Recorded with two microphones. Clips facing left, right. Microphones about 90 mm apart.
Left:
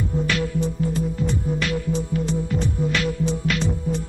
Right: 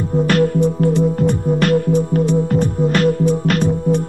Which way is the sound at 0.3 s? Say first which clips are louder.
Right 9 dB; 55° right (ahead or behind).